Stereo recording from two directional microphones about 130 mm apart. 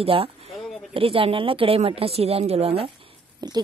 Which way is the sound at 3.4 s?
30° right (ahead or behind).